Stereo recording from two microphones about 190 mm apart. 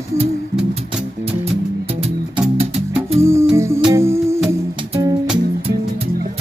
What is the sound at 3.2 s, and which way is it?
Music, 15° right (ahead or behind).